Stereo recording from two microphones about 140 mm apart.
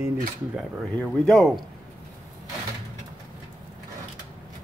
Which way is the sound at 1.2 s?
5° left (ahead or behind).